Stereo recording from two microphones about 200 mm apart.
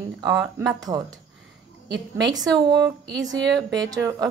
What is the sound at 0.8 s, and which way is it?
A woman's voice, 20° right (ahead or behind).